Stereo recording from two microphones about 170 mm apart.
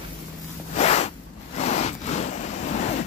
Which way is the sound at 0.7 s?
40° left (ahead or behind).